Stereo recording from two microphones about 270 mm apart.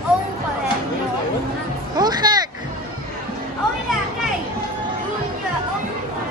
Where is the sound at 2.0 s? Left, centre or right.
Centre.